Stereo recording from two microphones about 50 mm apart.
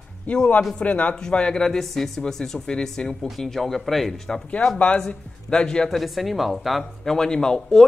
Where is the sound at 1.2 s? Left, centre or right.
Centre.